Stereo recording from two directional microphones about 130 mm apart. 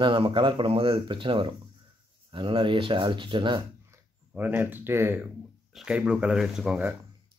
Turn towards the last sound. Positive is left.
turn(degrees=-5)  # may be behind; listen again after turning